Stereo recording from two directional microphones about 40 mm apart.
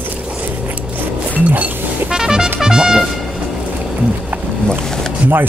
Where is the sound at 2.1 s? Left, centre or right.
Centre.